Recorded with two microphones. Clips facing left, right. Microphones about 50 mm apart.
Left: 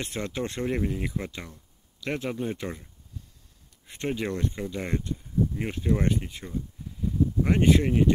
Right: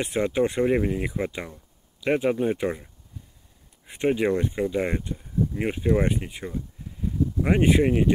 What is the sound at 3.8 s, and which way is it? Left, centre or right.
Speech, centre.